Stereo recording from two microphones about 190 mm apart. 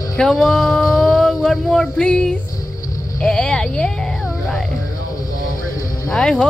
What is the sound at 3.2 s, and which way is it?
Music, 5° left (ahead or behind).